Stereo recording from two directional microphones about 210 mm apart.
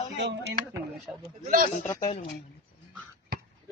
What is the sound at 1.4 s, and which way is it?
Speech, 40° right (ahead or behind).